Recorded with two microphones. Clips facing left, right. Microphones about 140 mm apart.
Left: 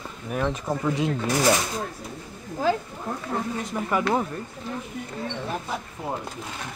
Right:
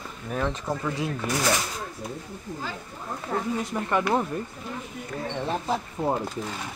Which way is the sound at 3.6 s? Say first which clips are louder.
Even; centre (ahead or behind).